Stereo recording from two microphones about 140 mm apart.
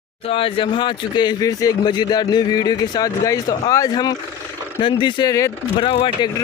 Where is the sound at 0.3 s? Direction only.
40° left (ahead or behind).